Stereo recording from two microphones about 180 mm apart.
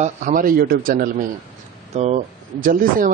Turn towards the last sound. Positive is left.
turn(degrees=-45)  # may be behind; listen again after turning